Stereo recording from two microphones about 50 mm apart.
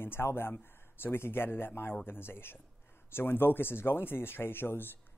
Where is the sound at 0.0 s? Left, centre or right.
Left.